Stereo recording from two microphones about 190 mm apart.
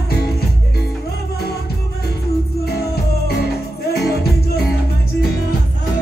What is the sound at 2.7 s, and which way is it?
Music, 55° left (ahead or behind).